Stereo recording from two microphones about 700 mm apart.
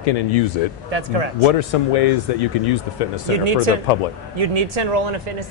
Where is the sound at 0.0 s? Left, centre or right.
Left.